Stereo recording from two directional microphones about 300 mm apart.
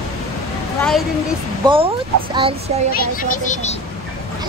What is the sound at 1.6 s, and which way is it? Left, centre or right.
Speech, centre.